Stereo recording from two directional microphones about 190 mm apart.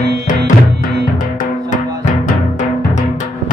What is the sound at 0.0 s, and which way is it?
Music, 20° right (ahead or behind).